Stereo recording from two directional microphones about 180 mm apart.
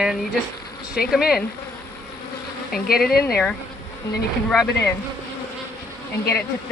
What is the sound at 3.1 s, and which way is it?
Speech, 60° left (ahead or behind).